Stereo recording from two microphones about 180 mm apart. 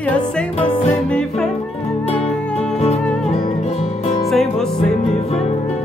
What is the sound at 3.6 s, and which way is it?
Music, 35° left (ahead or behind).